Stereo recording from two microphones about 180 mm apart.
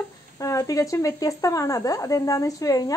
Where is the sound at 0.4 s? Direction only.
20° left (ahead or behind).